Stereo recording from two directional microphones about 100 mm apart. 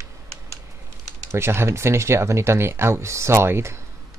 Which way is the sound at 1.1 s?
25° right (ahead or behind).